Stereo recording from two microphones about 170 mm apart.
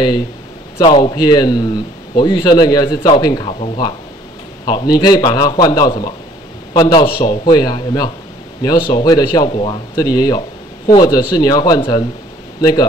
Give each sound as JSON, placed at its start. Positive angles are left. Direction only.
{"t": 0.8, "sound": "speech", "side_deg": 30}